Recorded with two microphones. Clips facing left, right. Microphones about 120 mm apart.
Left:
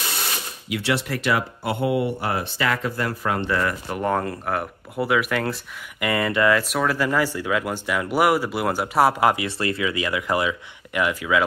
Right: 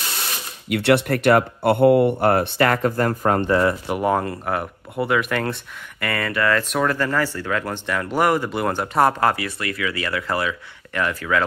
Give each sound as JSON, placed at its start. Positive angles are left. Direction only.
{"t": 0.7, "sound": "speech", "side_deg": -60}
{"t": 3.9, "sound": "speech", "side_deg": -5}
{"t": 5.9, "sound": "speech", "side_deg": 20}
{"t": 9.6, "sound": "speech", "side_deg": 25}